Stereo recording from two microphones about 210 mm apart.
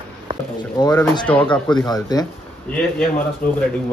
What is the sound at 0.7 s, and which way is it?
Speech, 15° left (ahead or behind).